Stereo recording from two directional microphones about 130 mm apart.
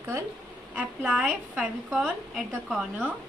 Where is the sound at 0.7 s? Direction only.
5° right (ahead or behind).